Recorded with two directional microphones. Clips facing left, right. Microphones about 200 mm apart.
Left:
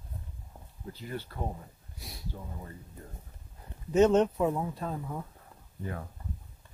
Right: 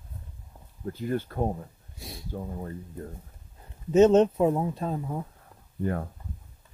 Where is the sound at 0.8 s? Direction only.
50° right (ahead or behind).